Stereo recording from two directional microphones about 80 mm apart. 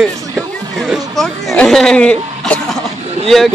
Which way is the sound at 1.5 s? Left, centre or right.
Centre.